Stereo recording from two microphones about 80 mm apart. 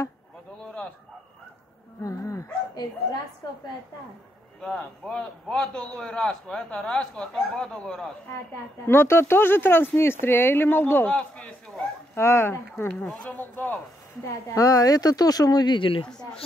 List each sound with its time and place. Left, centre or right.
2.0 s dog: left
2.7 s a woman's voice: left
4.6 s a man's voice: centre
8.8 s speech: left
11.1 s a man's voice: centre
12.2 s speech: left
13.1 s speech: centre
14.5 s speech: left
16.1 s a man's voice: centre